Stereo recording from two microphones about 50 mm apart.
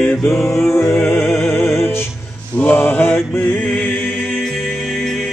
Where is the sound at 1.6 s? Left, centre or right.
Left.